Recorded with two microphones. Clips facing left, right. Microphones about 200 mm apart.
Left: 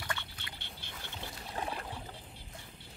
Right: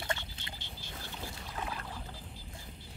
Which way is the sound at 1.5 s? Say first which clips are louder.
Left 3 dB; 30° left (ahead or behind).